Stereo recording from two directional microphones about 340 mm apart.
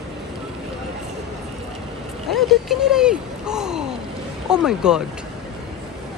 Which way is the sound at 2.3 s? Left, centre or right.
Centre.